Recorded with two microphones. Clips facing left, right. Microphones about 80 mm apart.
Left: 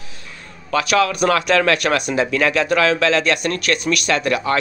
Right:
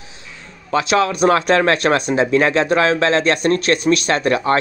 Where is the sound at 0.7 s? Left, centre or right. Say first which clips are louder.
Right 1 dB; right.